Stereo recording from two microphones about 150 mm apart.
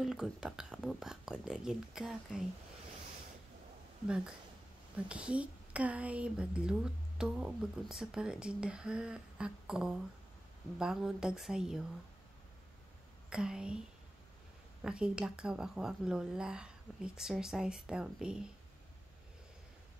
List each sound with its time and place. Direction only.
0.0 s speech: 5° right (ahead or behind)
4.9 s speech: 10° right (ahead or behind)
13.3 s speech: 5° right (ahead or behind)